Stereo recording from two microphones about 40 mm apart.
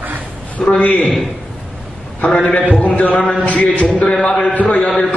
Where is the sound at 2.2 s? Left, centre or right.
Left.